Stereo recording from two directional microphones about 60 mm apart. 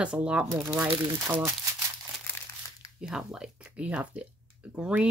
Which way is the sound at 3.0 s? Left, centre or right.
Centre.